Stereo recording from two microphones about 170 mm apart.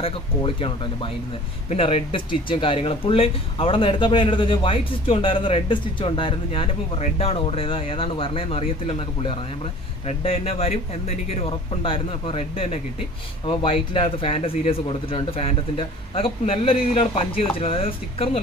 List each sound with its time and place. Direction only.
0.0 s speech: 30° left (ahead or behind)